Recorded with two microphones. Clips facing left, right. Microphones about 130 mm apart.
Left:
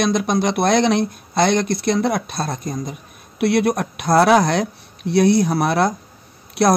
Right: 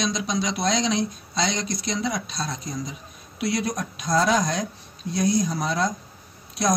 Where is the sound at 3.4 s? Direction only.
65° left (ahead or behind).